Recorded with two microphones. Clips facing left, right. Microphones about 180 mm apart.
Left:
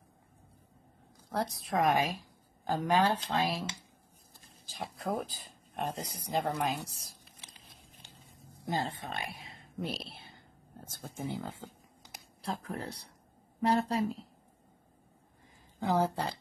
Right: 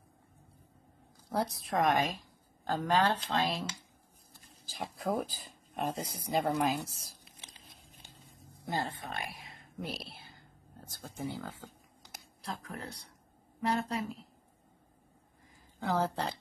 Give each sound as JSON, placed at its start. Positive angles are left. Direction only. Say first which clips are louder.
{"t": 1.3, "sound": "a woman's voice", "louder": "even", "side_deg": -5}
{"t": 4.6, "sound": "speech", "louder": "right 1 dB", "side_deg": 0}
{"t": 8.6, "sound": "speech", "louder": "left 1 dB", "side_deg": 20}
{"t": 9.5, "sound": "a sound", "louder": "left 3 dB", "side_deg": 25}
{"t": 12.4, "sound": "speech", "louder": "left 4 dB", "side_deg": 30}
{"t": 15.8, "sound": "speech", "louder": "left 2 dB", "side_deg": 15}